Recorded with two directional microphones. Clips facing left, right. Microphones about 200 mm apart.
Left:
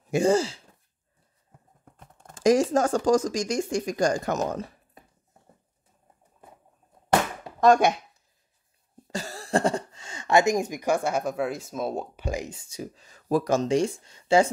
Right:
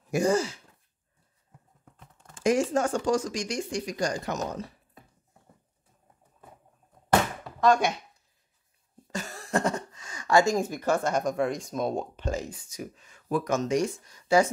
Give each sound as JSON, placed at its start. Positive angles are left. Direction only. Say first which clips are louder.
{"t": 0.1, "sound": "speech", "louder": "left 3 dB", "side_deg": 25}
{"t": 2.0, "sound": "a sound", "louder": "left 4 dB", "side_deg": 45}
{"t": 2.4, "sound": "speech", "louder": "left 4 dB", "side_deg": 35}
{"t": 7.6, "sound": "speech", "louder": "left 4 dB", "side_deg": 45}
{"t": 9.0, "sound": "speech", "louder": "left 2 dB", "side_deg": 30}
{"t": 12.5, "sound": "speech", "louder": "left 2 dB", "side_deg": 30}